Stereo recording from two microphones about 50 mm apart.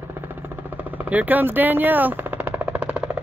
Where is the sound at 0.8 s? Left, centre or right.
Right.